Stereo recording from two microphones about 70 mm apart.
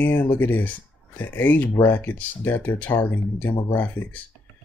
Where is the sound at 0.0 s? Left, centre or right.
Left.